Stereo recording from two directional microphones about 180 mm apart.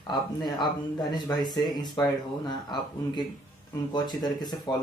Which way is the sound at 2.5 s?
25° left (ahead or behind).